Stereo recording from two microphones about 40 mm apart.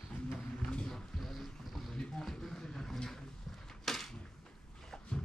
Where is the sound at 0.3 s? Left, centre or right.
Left.